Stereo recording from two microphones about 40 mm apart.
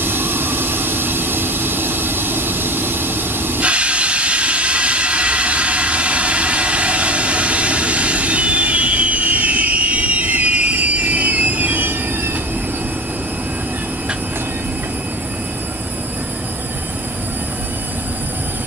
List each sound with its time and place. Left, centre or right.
0.0 s vehicle: right
3.6 s steam: right